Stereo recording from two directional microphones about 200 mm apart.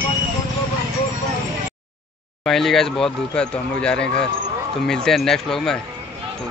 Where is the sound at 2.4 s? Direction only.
Centre (ahead or behind).